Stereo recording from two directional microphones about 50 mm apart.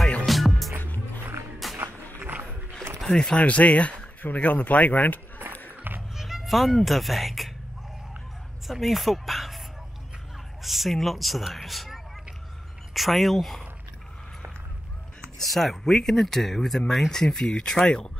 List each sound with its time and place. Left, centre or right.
0.3 s music: centre
3.1 s speech: centre
3.3 s speech: left
5.8 s a sound: right
6.1 s speech: centre
8.6 s speech: centre
10.6 s speech: centre
15.3 s speech: centre